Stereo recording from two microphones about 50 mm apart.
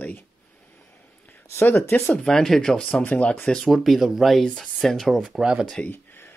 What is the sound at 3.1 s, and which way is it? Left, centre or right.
Speech, left.